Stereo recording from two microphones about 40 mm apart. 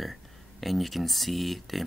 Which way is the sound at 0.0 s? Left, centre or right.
Centre.